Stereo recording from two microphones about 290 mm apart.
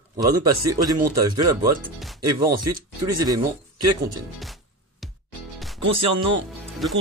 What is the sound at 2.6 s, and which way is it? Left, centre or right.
Speech, right.